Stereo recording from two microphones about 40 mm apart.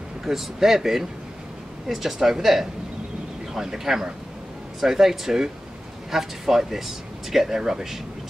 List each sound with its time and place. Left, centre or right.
0.2 s speech: centre